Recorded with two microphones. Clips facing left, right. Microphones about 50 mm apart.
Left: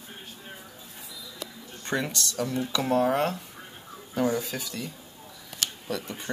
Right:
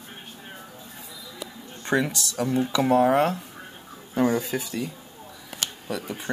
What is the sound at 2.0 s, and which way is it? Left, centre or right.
Speech, centre.